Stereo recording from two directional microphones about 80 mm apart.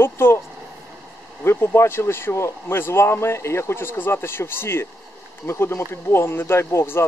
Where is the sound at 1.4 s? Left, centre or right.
Left.